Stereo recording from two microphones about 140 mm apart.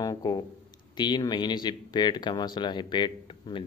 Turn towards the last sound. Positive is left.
turn(degrees=35)  # may be behind; listen again after turning